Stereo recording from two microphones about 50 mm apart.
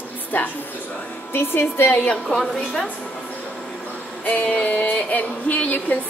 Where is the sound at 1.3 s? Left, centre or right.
Left.